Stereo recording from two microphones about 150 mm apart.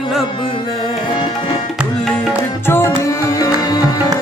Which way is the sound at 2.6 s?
15° left (ahead or behind).